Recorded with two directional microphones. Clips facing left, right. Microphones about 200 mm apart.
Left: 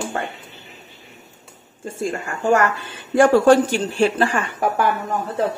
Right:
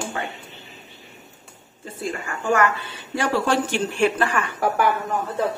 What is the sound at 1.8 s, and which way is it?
A woman's voice, 45° left (ahead or behind).